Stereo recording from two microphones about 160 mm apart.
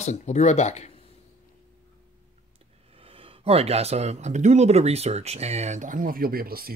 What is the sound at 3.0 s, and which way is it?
Speech, 35° right (ahead or behind).